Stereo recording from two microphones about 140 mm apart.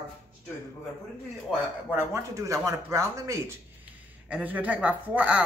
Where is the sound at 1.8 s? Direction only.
15° right (ahead or behind).